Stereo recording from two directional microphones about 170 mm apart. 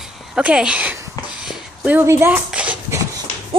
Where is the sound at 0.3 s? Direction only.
5° right (ahead or behind).